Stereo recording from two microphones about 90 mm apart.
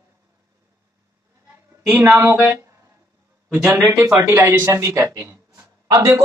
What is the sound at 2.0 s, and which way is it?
Speech, 30° right (ahead or behind).